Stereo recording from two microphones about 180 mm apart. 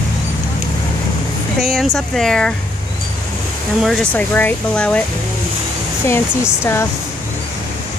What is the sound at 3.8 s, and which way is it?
Speech, 5° left (ahead or behind).